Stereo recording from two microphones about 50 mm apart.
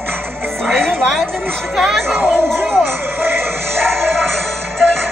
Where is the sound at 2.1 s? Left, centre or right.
Right.